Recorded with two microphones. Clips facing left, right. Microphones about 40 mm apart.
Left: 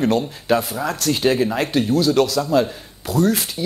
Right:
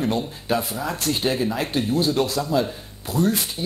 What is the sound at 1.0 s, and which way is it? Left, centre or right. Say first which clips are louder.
Speech: left 5 dB; left.